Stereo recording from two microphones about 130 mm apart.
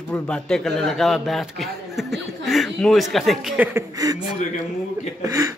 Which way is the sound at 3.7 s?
30° right (ahead or behind).